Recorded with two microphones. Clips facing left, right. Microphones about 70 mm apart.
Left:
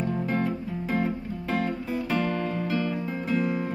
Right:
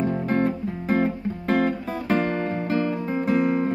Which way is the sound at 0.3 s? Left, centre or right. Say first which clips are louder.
Right 5 dB; right.